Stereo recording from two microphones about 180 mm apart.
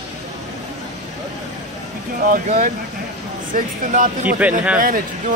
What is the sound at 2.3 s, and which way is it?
A man's voice, 45° right (ahead or behind).